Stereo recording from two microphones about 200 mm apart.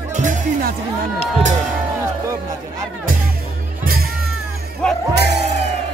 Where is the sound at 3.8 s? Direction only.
45° right (ahead or behind).